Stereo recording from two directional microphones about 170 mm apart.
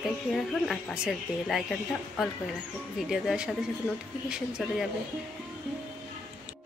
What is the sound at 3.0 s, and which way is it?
Speech, 5° right (ahead or behind).